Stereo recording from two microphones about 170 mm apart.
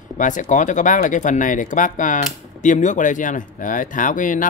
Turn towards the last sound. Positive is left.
turn(degrees=50)  # may be behind; listen again after turning